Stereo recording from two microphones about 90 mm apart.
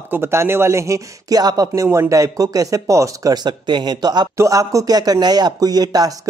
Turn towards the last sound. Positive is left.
turn(degrees=-45)  # may be behind; listen again after turning